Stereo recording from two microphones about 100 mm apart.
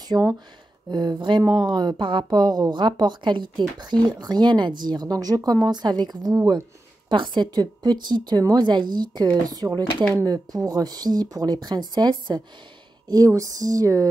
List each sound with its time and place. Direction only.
0.1 s speech: 20° right (ahead or behind)
0.8 s speech: 50° right (ahead or behind)
13.1 s speech: 35° right (ahead or behind)